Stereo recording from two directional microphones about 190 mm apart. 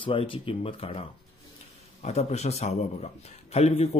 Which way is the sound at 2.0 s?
35° left (ahead or behind).